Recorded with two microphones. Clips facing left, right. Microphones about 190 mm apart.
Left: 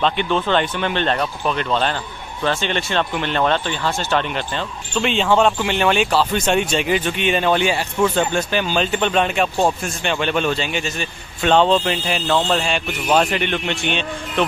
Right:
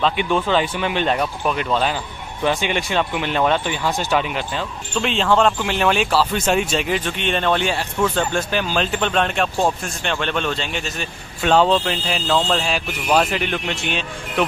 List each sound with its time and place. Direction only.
0.0 s speech: 5° right (ahead or behind)